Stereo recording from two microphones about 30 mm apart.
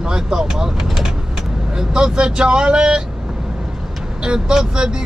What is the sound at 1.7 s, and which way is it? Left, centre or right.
Speech, right.